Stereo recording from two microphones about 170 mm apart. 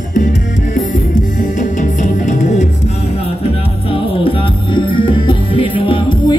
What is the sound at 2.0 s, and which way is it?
Music, 45° left (ahead or behind).